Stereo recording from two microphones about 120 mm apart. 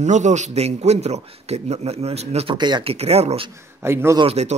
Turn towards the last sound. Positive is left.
turn(degrees=-65)  # may be behind; listen again after turning